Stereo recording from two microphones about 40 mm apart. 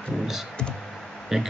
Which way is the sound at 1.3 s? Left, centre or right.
Centre.